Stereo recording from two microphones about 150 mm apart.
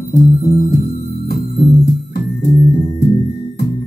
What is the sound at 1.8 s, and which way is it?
Music, 90° left.